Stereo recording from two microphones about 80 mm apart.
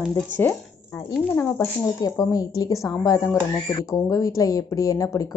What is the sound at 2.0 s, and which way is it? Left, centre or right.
Speech, left.